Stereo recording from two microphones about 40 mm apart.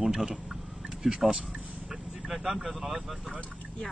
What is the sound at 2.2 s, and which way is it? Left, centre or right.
Speech, centre.